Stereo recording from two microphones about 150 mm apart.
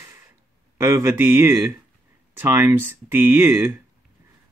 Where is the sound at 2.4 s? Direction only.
15° right (ahead or behind).